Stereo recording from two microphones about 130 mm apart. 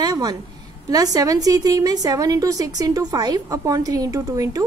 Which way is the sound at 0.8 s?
30° right (ahead or behind).